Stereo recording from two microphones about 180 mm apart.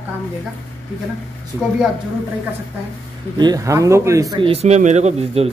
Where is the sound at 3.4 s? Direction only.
20° right (ahead or behind).